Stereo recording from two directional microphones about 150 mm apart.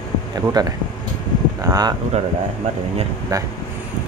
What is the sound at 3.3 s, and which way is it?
Speech, 25° right (ahead or behind).